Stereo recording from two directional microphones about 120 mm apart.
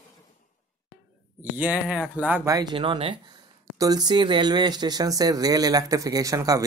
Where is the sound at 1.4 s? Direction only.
15° right (ahead or behind).